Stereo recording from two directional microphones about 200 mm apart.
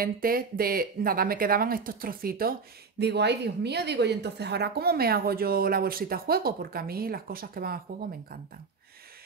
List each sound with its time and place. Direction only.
0.0 s speech: 45° right (ahead or behind)
3.0 s speech: 55° right (ahead or behind)